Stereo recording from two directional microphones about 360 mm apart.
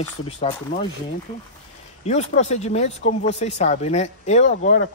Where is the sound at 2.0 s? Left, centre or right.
Centre.